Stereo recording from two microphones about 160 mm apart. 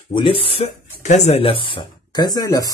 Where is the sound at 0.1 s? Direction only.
35° left (ahead or behind).